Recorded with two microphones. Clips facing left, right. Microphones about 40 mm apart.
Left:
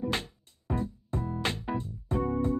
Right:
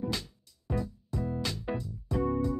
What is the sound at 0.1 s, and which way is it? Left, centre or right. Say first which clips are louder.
Music: left 4 dB; left.